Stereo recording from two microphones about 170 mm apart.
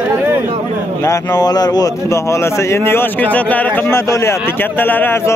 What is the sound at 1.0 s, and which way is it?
Speech, 15° left (ahead or behind).